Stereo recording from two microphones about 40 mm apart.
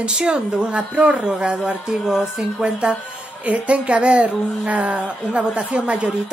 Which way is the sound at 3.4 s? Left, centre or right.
Right.